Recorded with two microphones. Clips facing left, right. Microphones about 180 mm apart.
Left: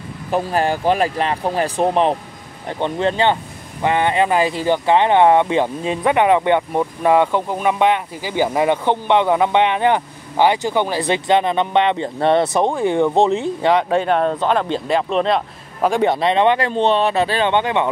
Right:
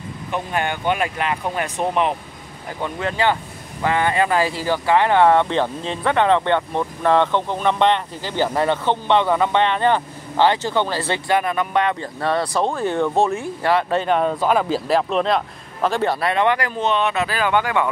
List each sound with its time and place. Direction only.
0.3 s speech: 35° left (ahead or behind); by 13.8 s 20° left (ahead or behind)
13.8 s speech: centre (ahead or behind)
15.9 s speech: 15° left (ahead or behind)